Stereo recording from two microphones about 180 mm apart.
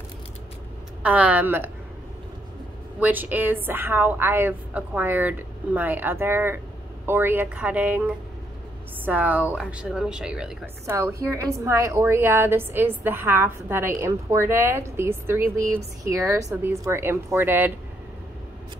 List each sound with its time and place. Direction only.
1.0 s a woman's voice: 10° right (ahead or behind)
3.0 s a woman's voice: 10° right (ahead or behind)
9.0 s a woman's voice: 10° right (ahead or behind)
10.9 s a woman's voice: 15° right (ahead or behind)